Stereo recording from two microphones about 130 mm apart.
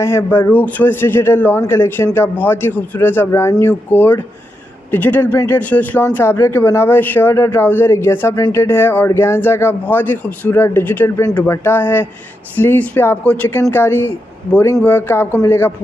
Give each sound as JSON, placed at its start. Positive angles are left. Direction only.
{"t": 0.0, "sound": "a man's voice", "side_deg": 20}